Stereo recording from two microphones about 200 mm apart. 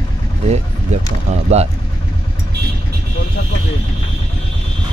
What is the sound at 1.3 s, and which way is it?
Speech, 35° right (ahead or behind).